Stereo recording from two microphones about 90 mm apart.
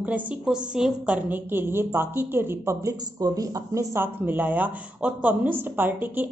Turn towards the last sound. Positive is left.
turn(degrees=-20)  # may be behind; listen again after turning